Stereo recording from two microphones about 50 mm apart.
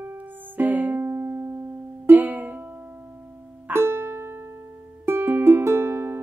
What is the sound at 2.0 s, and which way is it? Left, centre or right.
Music, right.